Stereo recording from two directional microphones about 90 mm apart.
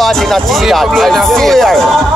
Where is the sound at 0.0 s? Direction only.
Centre (ahead or behind).